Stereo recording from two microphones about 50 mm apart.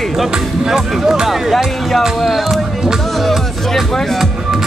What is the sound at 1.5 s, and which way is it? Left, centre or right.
Speech, centre.